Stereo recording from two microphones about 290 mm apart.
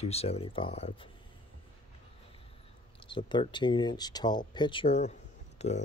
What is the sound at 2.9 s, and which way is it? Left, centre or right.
Speech, centre.